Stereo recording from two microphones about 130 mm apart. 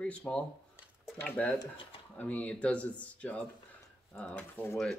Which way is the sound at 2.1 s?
10° left (ahead or behind).